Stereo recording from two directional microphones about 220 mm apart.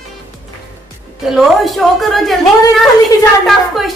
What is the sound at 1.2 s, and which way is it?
A woman's voice, centre (ahead or behind).